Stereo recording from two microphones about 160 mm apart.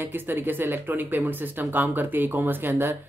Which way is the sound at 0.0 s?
10° right (ahead or behind).